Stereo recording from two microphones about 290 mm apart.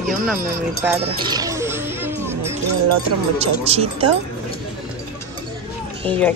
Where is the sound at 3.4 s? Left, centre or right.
Right.